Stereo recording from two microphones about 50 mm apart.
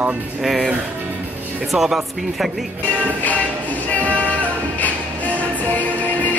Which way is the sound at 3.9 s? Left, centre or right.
Left.